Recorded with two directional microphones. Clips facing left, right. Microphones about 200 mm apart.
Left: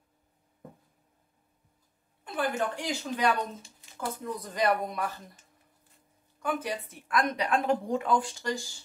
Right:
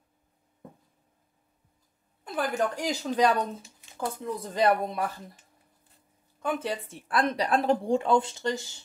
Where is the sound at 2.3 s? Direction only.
40° right (ahead or behind).